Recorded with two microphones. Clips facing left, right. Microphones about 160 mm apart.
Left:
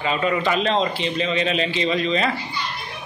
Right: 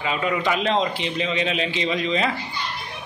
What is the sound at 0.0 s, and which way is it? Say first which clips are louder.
A man's voice: left 2 dB; 10° right (ahead or behind).